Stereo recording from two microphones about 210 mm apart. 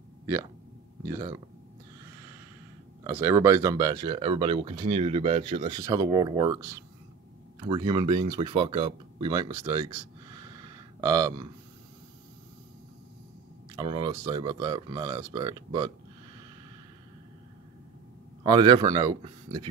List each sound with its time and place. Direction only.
1.0 s speech: 15° right (ahead or behind)
3.0 s speech: 10° right (ahead or behind)
11.0 s speech: 15° right (ahead or behind)
13.7 s speech: 20° right (ahead or behind)
18.4 s speech: 20° right (ahead or behind)